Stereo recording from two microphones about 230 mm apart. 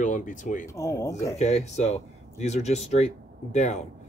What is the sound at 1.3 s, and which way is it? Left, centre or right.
Speech, left.